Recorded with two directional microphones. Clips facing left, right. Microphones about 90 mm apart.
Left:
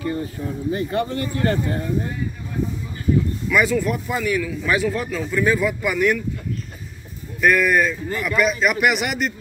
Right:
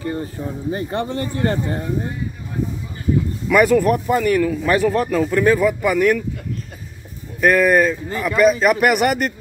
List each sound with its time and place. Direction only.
0.0 s speech: 35° right (ahead or behind)
3.4 s a man's voice: 60° right (ahead or behind); by 6.1 s 40° right (ahead or behind)
7.3 s speech: 35° right (ahead or behind)